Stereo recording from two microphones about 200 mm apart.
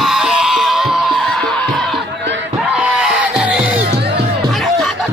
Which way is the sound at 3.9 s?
55° right (ahead or behind).